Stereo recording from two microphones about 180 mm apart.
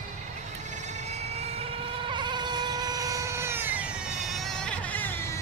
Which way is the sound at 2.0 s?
25° right (ahead or behind).